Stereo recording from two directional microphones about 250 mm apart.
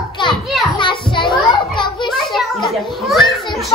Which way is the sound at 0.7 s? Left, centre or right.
Centre.